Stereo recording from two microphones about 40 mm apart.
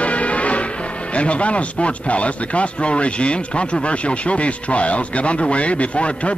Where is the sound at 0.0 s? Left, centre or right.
Left.